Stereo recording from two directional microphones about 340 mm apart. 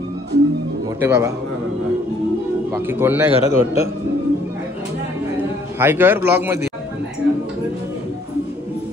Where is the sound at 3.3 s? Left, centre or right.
Centre.